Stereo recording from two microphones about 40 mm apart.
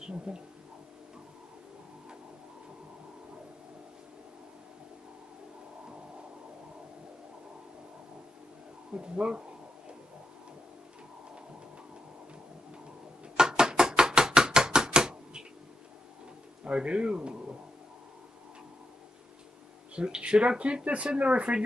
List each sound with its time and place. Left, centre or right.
0.0 s speech: right
8.9 s speech: right
13.4 s chopping: centre
16.6 s a man's voice: right
20.0 s speech: right